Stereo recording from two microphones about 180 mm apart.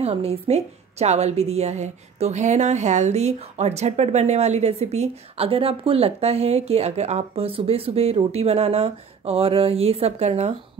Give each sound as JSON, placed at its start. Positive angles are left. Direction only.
{"t": 0.0, "sound": "a woman's voice", "side_deg": -35}